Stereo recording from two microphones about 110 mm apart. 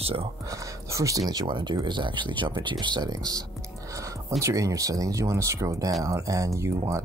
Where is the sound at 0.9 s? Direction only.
30° right (ahead or behind).